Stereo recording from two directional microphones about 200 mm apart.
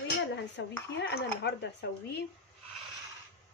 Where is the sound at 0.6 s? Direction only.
65° left (ahead or behind).